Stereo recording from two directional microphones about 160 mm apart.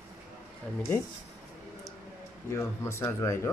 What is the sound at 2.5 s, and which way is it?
Speech, 15° left (ahead or behind).